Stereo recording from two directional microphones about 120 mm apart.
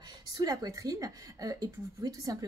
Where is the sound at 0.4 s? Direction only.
30° right (ahead or behind).